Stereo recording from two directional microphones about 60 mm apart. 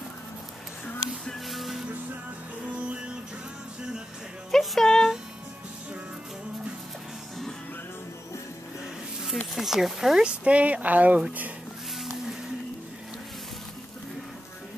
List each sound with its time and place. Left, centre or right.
1.5 s music: centre
2.7 s music: centre
4.5 s speech: centre
9.6 s speech: centre
10.2 s speech: right